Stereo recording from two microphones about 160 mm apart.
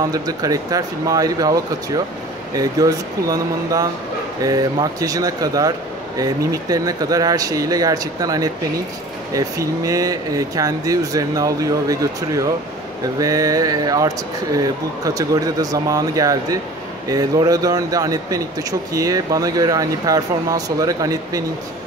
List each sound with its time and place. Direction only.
0.1 s speech: 25° right (ahead or behind)